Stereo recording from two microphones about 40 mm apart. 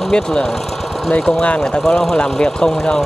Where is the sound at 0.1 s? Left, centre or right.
Centre.